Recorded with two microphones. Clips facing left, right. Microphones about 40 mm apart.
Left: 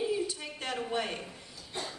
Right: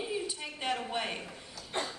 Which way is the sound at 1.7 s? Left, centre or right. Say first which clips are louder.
Right 4 dB; right.